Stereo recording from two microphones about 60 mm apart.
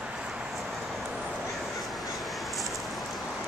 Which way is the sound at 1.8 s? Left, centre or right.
Centre.